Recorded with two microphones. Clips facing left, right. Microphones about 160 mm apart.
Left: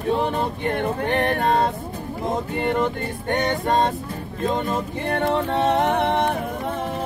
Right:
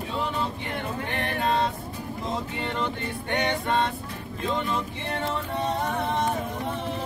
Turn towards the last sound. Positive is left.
turn(degrees=65)  # may be behind; listen again after turning